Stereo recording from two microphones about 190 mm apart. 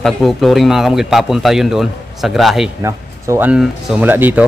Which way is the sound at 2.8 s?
10° right (ahead or behind).